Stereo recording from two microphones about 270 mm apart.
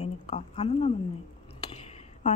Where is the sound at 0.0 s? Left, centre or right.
Left.